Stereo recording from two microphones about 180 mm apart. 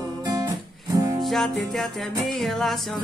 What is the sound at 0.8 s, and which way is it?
Music, 20° right (ahead or behind).